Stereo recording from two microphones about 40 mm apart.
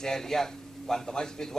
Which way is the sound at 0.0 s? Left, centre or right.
Centre.